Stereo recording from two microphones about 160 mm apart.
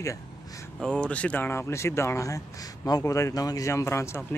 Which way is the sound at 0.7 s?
5° left (ahead or behind).